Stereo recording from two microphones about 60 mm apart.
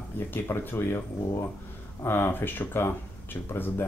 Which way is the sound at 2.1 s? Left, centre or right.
Left.